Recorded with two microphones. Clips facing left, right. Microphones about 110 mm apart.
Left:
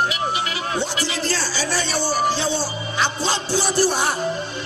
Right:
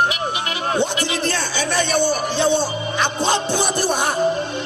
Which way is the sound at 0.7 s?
60° right (ahead or behind).